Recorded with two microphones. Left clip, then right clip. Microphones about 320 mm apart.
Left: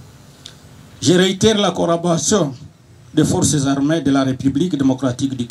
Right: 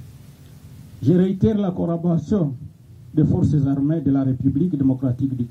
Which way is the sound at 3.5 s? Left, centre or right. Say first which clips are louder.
Left 5 dB; centre.